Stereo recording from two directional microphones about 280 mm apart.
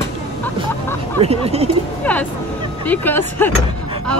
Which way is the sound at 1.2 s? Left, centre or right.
Right.